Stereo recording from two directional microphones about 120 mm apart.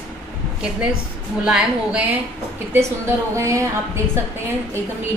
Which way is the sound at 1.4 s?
10° right (ahead or behind).